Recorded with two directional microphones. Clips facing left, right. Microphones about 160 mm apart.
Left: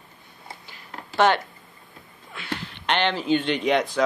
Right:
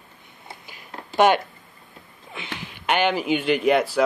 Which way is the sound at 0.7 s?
15° right (ahead or behind).